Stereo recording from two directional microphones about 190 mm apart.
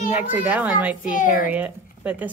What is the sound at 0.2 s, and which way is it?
Speech, 10° right (ahead or behind).